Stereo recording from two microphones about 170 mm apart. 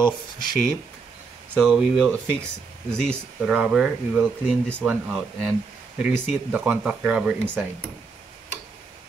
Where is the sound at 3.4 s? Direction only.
5° right (ahead or behind).